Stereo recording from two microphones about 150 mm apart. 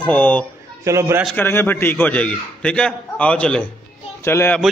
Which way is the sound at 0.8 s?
20° right (ahead or behind).